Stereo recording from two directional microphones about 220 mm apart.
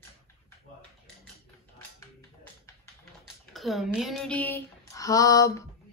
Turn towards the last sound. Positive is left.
turn(degrees=15)  # may be behind; listen again after turning